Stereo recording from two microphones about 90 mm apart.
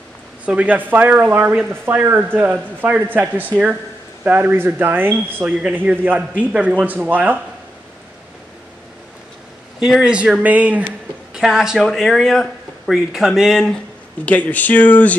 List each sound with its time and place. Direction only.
0.5 s speech: 15° right (ahead or behind)
9.8 s speech: 5° right (ahead or behind)
11.3 s a man's voice: 5° right (ahead or behind)
14.2 s speech: 15° left (ahead or behind)